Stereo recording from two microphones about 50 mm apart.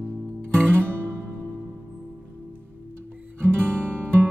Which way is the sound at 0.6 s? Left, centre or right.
Right.